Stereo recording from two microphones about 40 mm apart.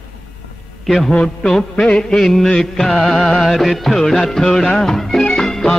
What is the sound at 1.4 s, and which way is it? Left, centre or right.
Music, centre.